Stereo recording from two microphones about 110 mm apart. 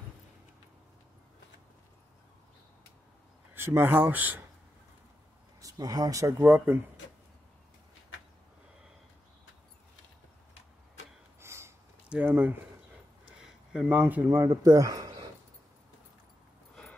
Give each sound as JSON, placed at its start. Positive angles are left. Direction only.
{"t": 3.5, "sound": "speech", "side_deg": -20}
{"t": 5.6, "sound": "speech", "side_deg": -30}
{"t": 6.4, "sound": "speech", "side_deg": -20}
{"t": 11.3, "sound": "a sound", "side_deg": -25}
{"t": 12.3, "sound": "speech", "side_deg": -15}
{"t": 13.8, "sound": "a man's voice", "side_deg": -15}